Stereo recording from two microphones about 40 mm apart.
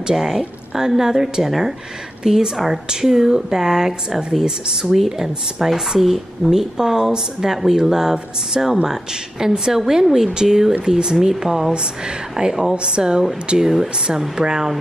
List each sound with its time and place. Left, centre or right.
0.0 s speech: centre
6.5 s speech: centre
11.7 s a woman's voice: centre